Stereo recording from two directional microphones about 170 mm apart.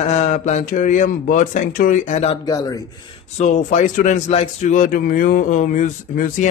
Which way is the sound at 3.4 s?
50° left (ahead or behind).